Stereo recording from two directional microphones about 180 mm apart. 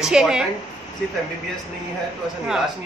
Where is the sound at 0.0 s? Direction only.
5° right (ahead or behind).